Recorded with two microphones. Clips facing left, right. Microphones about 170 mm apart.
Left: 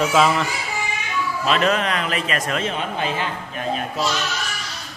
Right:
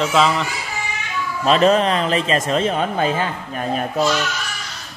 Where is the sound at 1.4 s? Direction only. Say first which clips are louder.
Right 6 dB; 35° right (ahead or behind).